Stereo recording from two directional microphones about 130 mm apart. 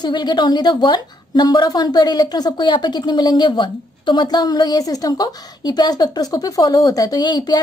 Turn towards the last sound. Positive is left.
turn(degrees=35)  # may be behind; listen again after turning